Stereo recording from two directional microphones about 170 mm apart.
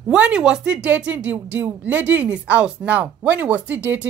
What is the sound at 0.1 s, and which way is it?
Speech, 5° right (ahead or behind).